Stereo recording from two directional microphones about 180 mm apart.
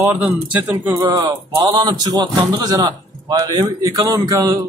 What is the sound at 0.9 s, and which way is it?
Speech, 20° right (ahead or behind).